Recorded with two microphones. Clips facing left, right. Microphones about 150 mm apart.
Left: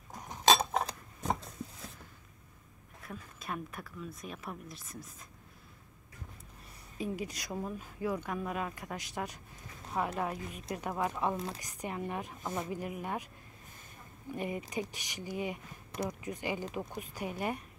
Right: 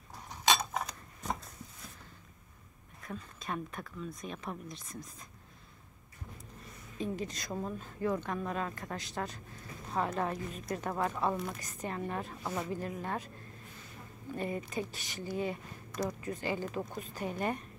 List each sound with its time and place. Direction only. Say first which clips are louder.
0.5 s a sound: left 4 dB; 30° left (ahead or behind)
3.1 s speech: right 2 dB; 5° left (ahead or behind)
7.0 s a woman's voice: even; 10° left (ahead or behind)
14.3 s a woman's voice: even; 15° left (ahead or behind)